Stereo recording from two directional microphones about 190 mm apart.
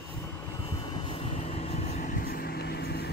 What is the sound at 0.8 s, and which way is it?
Vehicle, 25° left (ahead or behind).